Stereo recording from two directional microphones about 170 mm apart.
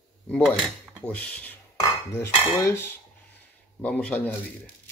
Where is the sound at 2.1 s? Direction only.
15° left (ahead or behind).